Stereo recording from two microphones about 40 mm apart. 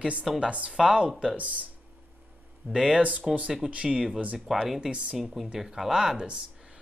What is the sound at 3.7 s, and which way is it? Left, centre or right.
Speech, right.